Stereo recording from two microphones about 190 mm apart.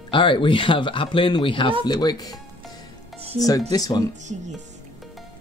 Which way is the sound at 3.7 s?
20° left (ahead or behind).